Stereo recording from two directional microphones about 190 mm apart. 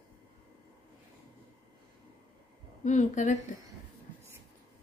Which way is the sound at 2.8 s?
40° left (ahead or behind).